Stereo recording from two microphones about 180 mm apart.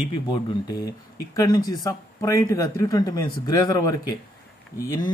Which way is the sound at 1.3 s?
20° left (ahead or behind).